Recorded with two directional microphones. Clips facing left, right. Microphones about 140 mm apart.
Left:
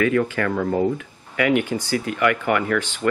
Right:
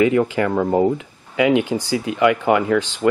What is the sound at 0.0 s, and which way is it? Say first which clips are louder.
Speech: right 4 dB; 20° right (ahead or behind).